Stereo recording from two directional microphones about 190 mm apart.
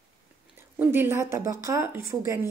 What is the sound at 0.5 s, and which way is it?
A woman's voice, 10° right (ahead or behind).